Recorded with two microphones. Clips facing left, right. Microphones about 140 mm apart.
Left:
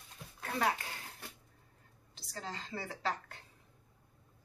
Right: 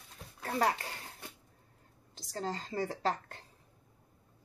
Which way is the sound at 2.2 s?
40° right (ahead or behind).